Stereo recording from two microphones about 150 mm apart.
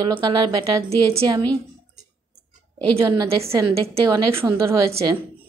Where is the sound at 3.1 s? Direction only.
25° right (ahead or behind).